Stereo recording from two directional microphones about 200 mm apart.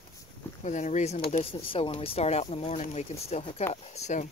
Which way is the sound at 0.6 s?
35° left (ahead or behind).